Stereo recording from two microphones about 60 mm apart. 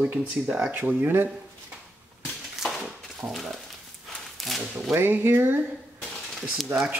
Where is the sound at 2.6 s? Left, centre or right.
Centre.